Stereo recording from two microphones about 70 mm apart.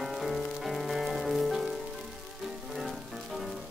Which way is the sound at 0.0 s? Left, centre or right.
Centre.